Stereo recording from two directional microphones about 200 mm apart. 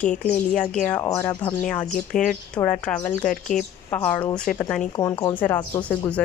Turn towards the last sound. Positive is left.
turn(degrees=10)  # may be behind; listen again after turning